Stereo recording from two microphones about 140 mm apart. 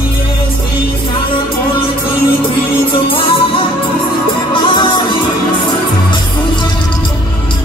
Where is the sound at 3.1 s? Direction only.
40° left (ahead or behind).